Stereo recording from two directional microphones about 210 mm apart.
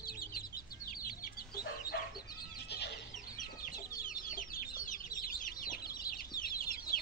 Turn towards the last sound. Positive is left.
turn(degrees=45)  # may be behind; listen again after turning